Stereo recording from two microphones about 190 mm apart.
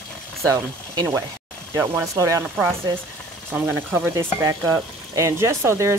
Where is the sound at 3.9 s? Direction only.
15° right (ahead or behind).